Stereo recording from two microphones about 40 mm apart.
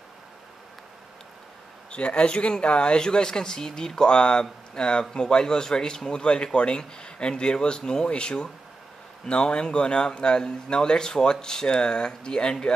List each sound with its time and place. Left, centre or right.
1.9 s a man's voice: left